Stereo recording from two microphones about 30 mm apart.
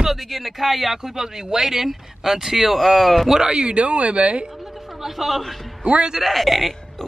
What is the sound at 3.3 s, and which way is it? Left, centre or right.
Speech, right.